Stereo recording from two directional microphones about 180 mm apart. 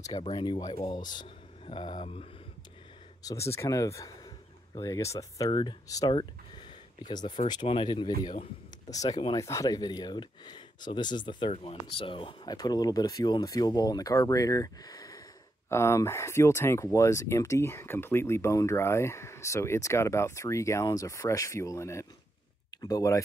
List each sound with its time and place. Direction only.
0.2 s speech: 25° left (ahead or behind)
3.3 s speech: 15° left (ahead or behind)